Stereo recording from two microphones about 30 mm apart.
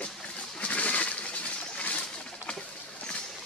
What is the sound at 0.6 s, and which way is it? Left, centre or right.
Bird, left.